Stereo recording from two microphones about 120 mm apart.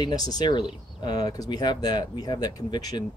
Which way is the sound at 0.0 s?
35° left (ahead or behind).